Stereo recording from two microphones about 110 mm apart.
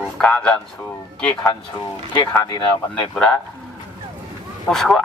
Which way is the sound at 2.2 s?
40° left (ahead or behind).